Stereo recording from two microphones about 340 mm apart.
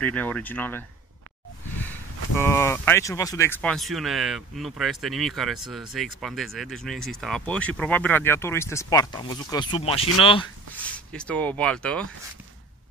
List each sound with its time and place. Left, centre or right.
0.0 s speech: centre
2.3 s speech: centre
11.1 s speech: centre